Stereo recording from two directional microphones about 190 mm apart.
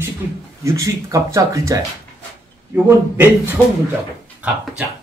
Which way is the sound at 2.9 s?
10° right (ahead or behind).